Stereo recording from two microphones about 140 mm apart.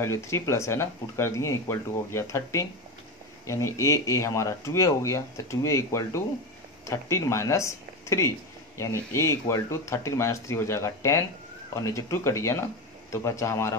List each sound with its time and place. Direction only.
0.0 s speech: 20° left (ahead or behind)